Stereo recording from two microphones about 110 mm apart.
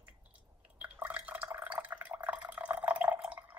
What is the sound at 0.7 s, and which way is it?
Drip, 15° right (ahead or behind).